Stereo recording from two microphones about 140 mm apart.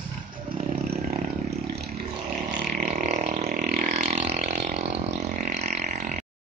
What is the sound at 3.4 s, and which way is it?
Vehicle, 70° right (ahead or behind).